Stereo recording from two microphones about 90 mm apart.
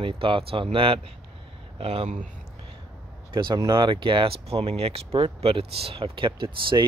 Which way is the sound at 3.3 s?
65° right (ahead or behind).